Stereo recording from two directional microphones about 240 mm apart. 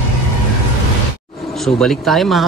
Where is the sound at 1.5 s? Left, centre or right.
Centre.